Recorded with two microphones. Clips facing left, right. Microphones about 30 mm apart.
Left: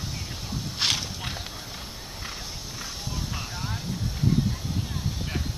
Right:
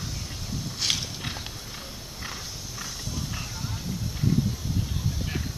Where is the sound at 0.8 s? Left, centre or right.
Left.